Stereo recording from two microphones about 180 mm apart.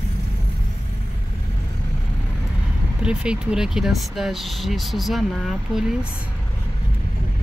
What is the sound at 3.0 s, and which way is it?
Speech, 5° right (ahead or behind).